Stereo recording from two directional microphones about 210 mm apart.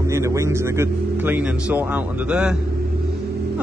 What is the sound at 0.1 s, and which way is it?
A man's voice, 15° right (ahead or behind).